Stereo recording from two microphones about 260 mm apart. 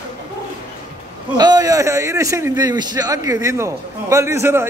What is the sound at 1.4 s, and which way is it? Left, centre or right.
A man's voice, centre.